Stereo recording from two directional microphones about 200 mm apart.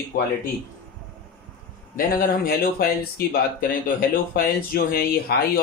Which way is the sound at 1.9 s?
45° left (ahead or behind).